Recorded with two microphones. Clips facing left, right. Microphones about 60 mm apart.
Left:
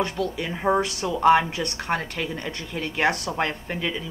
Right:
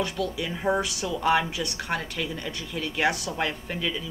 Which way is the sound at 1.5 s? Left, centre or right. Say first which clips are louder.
Left 2 dB; left.